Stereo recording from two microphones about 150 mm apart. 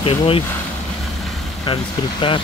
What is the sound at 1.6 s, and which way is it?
Speech, 35° left (ahead or behind).